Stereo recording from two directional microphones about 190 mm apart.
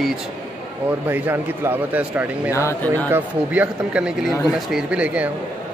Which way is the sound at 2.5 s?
15° left (ahead or behind).